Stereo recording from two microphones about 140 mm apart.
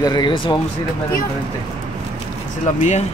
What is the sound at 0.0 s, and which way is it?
Speech, 30° left (ahead or behind).